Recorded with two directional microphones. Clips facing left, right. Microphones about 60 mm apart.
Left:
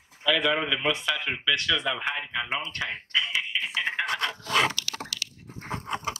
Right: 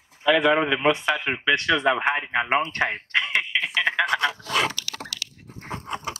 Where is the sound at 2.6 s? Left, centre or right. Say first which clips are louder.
Right 7 dB; right.